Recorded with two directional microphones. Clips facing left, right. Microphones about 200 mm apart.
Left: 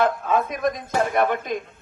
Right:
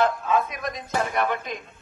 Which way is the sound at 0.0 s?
50° left (ahead or behind).